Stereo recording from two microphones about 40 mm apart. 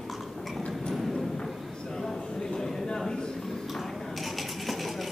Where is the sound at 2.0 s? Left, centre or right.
Centre.